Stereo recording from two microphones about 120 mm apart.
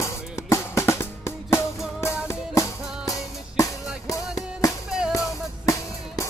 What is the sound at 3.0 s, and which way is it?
Music, 30° left (ahead or behind).